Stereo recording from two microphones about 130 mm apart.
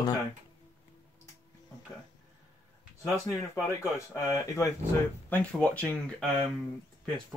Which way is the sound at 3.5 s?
25° left (ahead or behind).